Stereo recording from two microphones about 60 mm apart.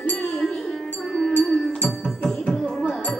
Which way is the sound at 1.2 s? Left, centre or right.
Centre.